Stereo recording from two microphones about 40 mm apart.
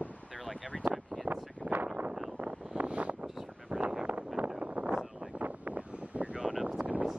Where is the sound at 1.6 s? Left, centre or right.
Right.